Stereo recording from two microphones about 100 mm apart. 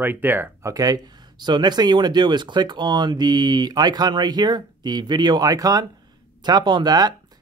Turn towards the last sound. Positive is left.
turn(degrees=-45)  # may be behind; listen again after turning